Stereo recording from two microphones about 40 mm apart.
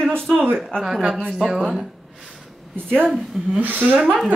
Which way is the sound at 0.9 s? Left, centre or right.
Centre.